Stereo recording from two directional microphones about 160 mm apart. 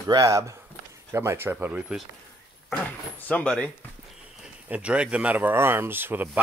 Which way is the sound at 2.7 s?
10° left (ahead or behind).